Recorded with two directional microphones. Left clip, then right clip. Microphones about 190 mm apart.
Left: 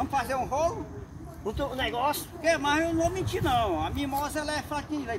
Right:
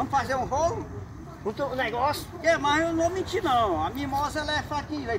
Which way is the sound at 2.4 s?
10° left (ahead or behind).